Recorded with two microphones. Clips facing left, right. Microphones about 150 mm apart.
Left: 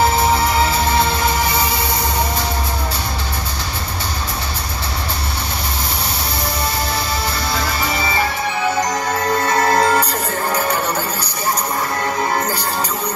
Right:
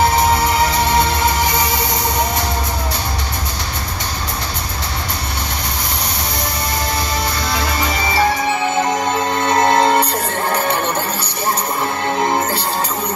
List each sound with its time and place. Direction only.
9.7 s music: 25° right (ahead or behind)